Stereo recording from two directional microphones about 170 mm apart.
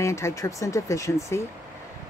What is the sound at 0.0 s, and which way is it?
Speech, 15° left (ahead or behind).